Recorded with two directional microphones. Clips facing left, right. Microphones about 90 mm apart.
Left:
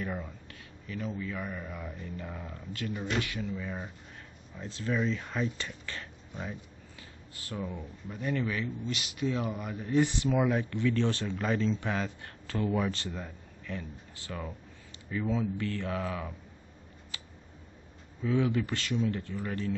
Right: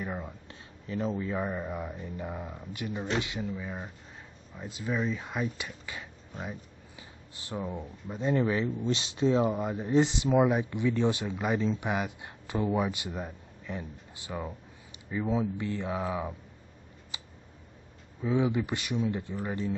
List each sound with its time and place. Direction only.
0.0 s speech: 20° right (ahead or behind)
17.1 s a sound: 20° right (ahead or behind)
18.2 s speech: 20° right (ahead or behind)